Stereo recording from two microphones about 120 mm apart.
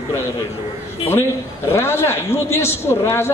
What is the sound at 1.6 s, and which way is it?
A man's voice, 20° left (ahead or behind).